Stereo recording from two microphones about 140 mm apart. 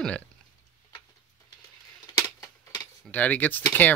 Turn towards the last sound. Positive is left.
turn(degrees=15)  # may be behind; listen again after turning